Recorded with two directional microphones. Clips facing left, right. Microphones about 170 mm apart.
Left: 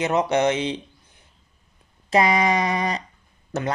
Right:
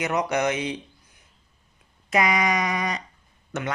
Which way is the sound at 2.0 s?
30° left (ahead or behind).